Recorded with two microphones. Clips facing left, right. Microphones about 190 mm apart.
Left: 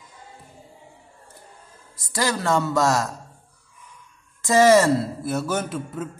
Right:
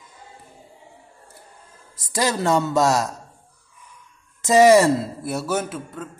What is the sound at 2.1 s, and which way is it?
Speech, 20° right (ahead or behind).